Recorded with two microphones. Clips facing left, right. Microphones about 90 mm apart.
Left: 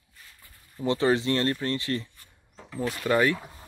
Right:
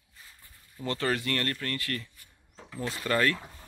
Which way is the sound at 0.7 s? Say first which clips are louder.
Left 6 dB; 20° left (ahead or behind).